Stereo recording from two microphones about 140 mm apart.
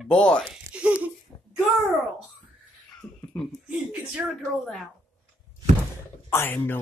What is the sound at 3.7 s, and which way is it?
Speech, 10° right (ahead or behind).